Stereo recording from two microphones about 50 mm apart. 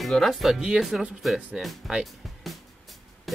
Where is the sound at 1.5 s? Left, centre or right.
Centre.